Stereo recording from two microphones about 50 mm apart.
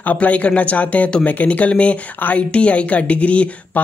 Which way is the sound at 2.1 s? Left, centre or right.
Left.